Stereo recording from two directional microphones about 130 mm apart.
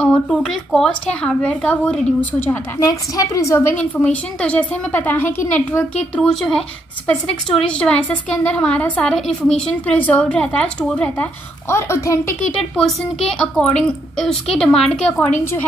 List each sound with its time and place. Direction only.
0.0 s a woman's voice: 10° left (ahead or behind)
3.7 s a woman's voice: 10° left (ahead or behind)
11.7 s a woman's voice: 20° left (ahead or behind)
12.4 s a woman's voice: 10° left (ahead or behind)